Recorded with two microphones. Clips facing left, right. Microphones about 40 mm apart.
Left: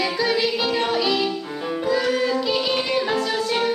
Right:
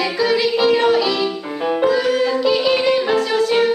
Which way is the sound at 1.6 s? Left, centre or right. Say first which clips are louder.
Right 11 dB; right.